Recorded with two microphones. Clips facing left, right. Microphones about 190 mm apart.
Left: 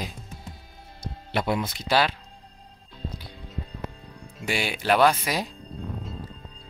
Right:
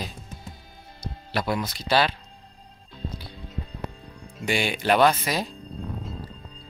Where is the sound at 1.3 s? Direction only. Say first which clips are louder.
Left 1 dB; 20° left (ahead or behind).